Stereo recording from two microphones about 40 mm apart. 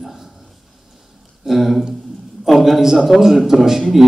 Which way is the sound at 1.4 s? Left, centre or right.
Centre.